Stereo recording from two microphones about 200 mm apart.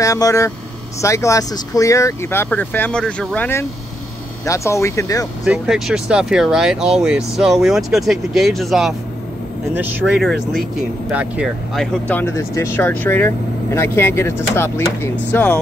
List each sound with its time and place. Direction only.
0.0 s speech: 15° left (ahead or behind)
5.4 s speech: centre (ahead or behind)
10.2 s speech: centre (ahead or behind)